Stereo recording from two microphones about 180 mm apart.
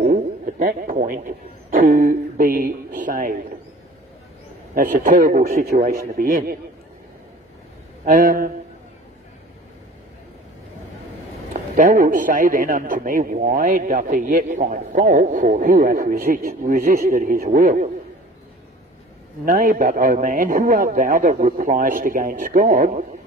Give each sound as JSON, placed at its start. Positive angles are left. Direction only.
{"t": 0.0, "sound": "a sound", "side_deg": -50}
{"t": 3.0, "sound": "a man's voice", "side_deg": -50}
{"t": 4.7, "sound": "a man's voice", "side_deg": -50}
{"t": 8.0, "sound": "a man's voice", "side_deg": -50}
{"t": 11.7, "sound": "a man's voice", "side_deg": -50}
{"t": 19.4, "sound": "a man's voice", "side_deg": -50}